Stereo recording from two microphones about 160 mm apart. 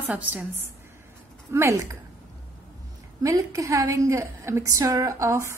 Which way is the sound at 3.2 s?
20° right (ahead or behind).